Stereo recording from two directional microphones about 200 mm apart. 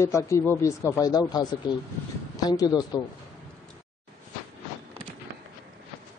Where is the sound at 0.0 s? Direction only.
15° left (ahead or behind).